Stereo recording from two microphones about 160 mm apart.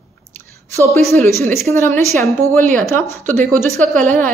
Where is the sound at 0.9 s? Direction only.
15° left (ahead or behind).